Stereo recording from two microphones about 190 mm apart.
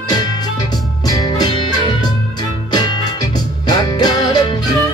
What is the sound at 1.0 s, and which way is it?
Music, 20° left (ahead or behind).